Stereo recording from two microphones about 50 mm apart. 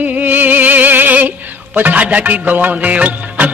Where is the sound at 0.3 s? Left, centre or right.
Right.